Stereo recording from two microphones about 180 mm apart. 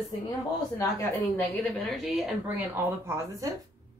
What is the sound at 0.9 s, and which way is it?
Speech, 15° left (ahead or behind).